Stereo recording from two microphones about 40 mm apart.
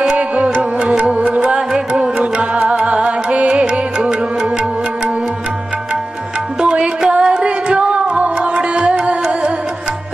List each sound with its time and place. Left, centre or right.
0.7 s music: right
1.1 s music: right
2.3 s music: right
6.6 s music: right